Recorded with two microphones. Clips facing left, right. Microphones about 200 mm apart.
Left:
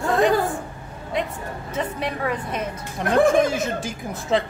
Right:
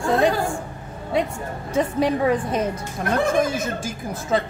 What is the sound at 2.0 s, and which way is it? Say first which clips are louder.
Speech: right 6 dB; 35° right (ahead or behind).